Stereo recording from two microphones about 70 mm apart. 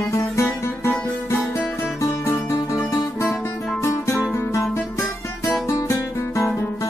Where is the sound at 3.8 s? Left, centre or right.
Left.